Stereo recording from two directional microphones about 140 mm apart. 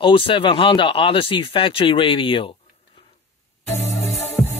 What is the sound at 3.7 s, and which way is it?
Music, 20° left (ahead or behind).